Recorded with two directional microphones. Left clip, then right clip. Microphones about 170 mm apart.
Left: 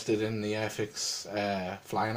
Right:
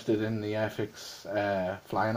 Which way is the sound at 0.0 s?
35° right (ahead or behind).